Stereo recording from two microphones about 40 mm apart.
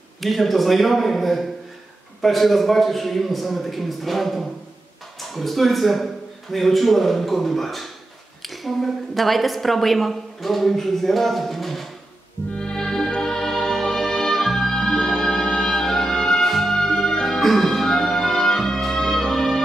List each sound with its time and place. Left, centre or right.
0.2 s a woman's voice: centre
12.5 s music: centre